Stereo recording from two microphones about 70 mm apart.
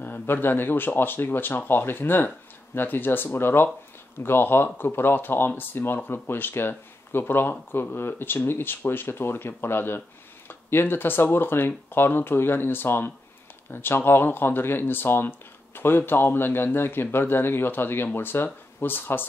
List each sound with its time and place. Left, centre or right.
0.0 s speech: left